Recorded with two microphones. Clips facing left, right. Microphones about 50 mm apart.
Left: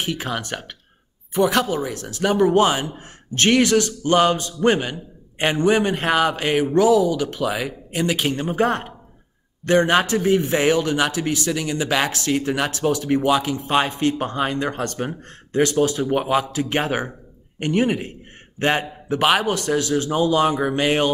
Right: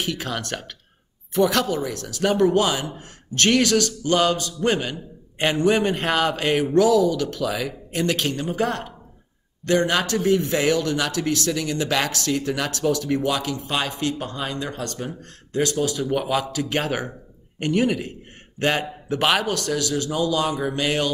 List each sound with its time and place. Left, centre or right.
0.0 s a man's voice: left
0.3 s a man's voice: centre
2.2 s speech: centre
2.5 s a man's voice: left
5.7 s speech: centre
7.9 s speech: centre
8.3 s a man's voice: left
12.1 s speech: left
16.0 s a man's voice: left
19.1 s speech: centre
19.4 s a man's voice: left